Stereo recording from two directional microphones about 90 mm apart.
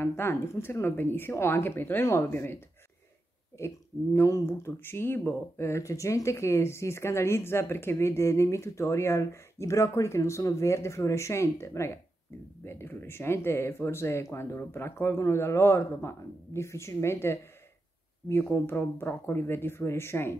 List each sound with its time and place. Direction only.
0.0 s speech: 25° left (ahead or behind)